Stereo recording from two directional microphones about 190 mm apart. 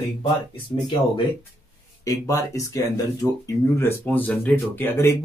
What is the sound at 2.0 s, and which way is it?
Speech, 15° left (ahead or behind).